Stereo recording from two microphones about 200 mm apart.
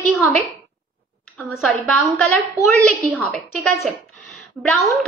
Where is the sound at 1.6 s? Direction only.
Centre (ahead or behind).